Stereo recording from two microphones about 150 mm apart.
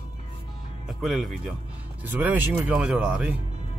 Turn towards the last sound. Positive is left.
turn(degrees=-5)  # may be behind; listen again after turning